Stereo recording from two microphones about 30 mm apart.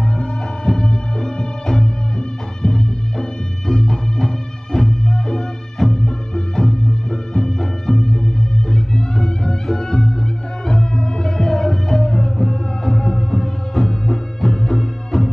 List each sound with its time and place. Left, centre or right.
0.7 s music: left